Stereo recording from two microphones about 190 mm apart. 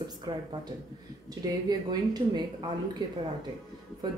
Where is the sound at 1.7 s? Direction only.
20° right (ahead or behind).